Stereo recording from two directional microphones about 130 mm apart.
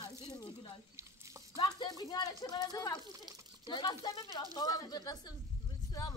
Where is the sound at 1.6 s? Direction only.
30° left (ahead or behind).